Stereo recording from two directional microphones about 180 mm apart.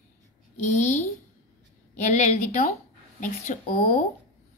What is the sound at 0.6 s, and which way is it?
A woman's voice, 40° left (ahead or behind).